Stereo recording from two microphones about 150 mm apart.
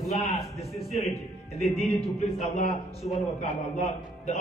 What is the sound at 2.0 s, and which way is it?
A man's voice, 40° left (ahead or behind).